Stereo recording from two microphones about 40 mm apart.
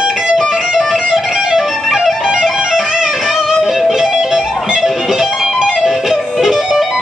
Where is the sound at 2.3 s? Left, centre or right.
Centre.